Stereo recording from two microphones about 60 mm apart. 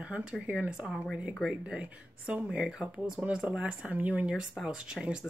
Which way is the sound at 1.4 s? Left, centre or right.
Centre.